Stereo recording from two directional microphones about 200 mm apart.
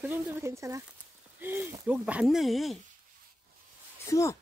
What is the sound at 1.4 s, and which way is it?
Speech, 10° right (ahead or behind).